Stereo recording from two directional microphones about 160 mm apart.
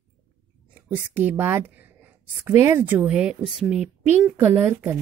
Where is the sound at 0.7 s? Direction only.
10° right (ahead or behind).